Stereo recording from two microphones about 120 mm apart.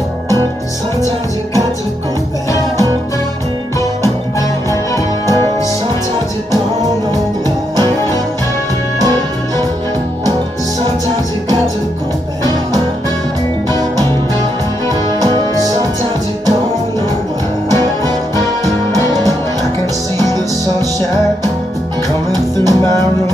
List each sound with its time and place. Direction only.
15.1 s music: 30° right (ahead or behind)
17.6 s music: 25° left (ahead or behind)
22.3 s music: 30° right (ahead or behind)